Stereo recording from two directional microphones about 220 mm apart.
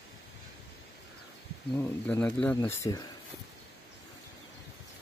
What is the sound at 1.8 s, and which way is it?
Speech, 5° left (ahead or behind).